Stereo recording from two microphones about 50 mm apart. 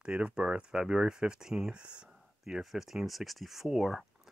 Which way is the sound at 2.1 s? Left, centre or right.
Centre.